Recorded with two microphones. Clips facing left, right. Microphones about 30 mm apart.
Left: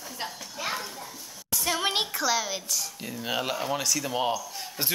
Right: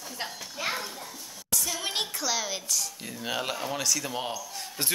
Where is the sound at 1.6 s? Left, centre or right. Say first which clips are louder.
Left 7 dB; left.